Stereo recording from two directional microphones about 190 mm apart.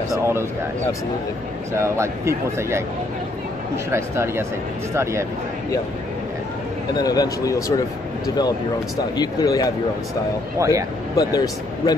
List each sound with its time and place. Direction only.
0.1 s speech: 15° right (ahead or behind)
1.7 s speech: 15° right (ahead or behind)
7.0 s speech: 20° left (ahead or behind)
9.1 s a man's voice: 20° left (ahead or behind)
10.6 s speech: 15° right (ahead or behind)
11.1 s a man's voice: 20° left (ahead or behind)